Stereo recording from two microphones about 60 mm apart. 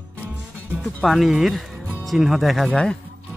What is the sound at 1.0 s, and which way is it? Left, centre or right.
Speech, centre.